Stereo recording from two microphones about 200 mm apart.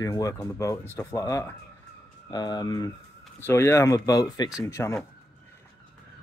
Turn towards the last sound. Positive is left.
turn(degrees=15)  # may be behind; listen again after turning